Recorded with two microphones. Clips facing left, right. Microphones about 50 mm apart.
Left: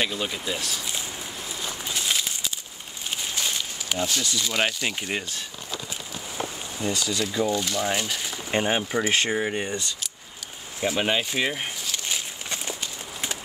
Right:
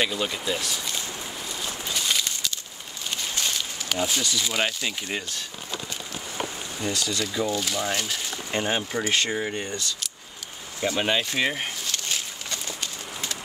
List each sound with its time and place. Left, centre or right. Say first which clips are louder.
0.0 s speech: right 1 dB; centre
1.6 s a sound: even; centre
4.0 s speech: right 1 dB; centre
4.8 s speech: left 2 dB; centre
6.8 s speech: left 1 dB; centre
10.8 s speech: even; centre
12.4 s horse: left 1 dB; centre